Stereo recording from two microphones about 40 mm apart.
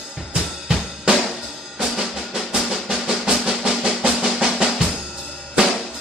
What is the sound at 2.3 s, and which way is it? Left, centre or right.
Drum, centre.